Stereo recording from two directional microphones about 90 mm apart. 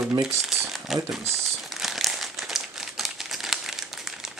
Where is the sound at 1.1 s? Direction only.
Centre (ahead or behind).